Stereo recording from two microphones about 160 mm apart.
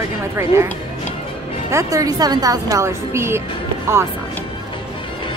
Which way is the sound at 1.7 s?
20° right (ahead or behind).